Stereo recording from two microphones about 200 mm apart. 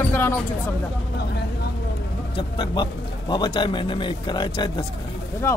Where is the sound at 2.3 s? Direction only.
25° left (ahead or behind).